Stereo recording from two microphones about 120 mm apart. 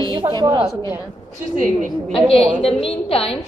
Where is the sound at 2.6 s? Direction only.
50° left (ahead or behind).